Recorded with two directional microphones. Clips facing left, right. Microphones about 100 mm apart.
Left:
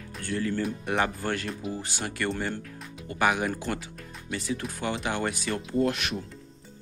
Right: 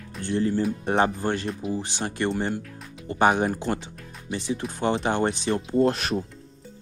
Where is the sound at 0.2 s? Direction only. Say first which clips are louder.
Right 5 dB; 25° right (ahead or behind).